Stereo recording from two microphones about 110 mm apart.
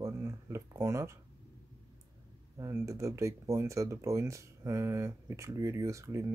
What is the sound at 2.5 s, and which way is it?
Speech, 25° right (ahead or behind).